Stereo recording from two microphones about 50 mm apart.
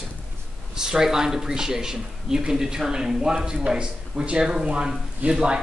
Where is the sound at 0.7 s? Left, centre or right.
Centre.